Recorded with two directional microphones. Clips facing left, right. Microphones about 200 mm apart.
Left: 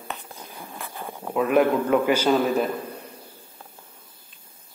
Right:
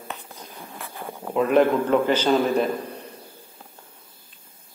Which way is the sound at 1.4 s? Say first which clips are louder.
Right 1 dB; 5° left (ahead or behind).